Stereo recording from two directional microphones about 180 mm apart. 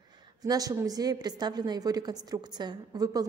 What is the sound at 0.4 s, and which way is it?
A woman's voice, 20° right (ahead or behind).